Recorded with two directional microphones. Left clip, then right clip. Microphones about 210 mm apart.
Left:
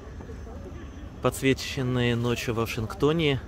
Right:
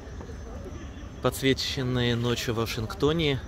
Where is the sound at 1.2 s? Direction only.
15° left (ahead or behind).